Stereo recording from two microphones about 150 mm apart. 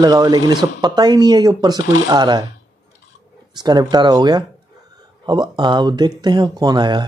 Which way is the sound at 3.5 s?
30° right (ahead or behind).